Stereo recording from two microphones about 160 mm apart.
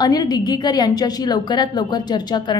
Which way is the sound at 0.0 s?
25° left (ahead or behind).